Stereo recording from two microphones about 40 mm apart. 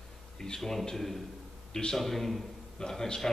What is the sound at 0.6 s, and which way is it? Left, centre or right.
Speech, centre.